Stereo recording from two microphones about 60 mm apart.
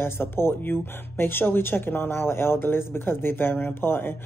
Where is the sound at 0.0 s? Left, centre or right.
Left.